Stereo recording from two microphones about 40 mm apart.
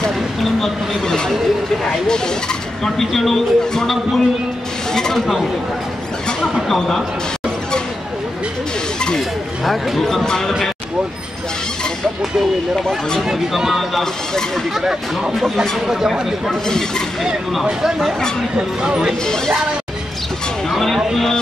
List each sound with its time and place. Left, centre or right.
0.4 s speech: centre
9.7 s speech: centre
10.0 s speech: centre
12.7 s speech: centre
14.7 s speech: centre
16.4 s speech: centre
17.6 s speech: centre
19.2 s speech: centre
20.7 s speech: centre